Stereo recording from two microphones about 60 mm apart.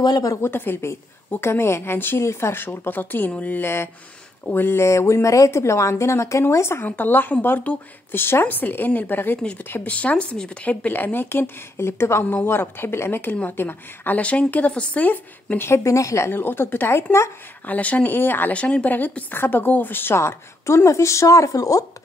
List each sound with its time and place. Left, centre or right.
0.4 s a woman's voice: left
3.6 s a woman's voice: left
5.5 s a woman's voice: left
6.9 s speech: left
9.8 s speech: left
13.3 s a woman's voice: left
15.7 s speech: left
16.3 s speech: left
17.6 s a woman's voice: left
18.1 s speech: left
18.5 s a woman's voice: left
18.9 s a woman's voice: left